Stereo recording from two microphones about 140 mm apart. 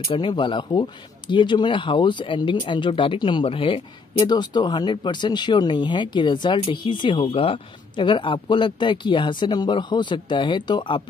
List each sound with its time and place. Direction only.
0.1 s speech: 35° left (ahead or behind)